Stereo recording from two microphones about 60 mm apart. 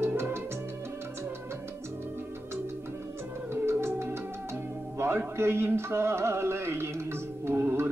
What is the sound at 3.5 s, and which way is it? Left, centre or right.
Music, right.